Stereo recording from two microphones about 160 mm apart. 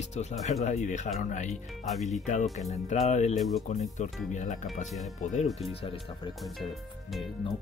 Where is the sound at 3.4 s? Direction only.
Centre (ahead or behind).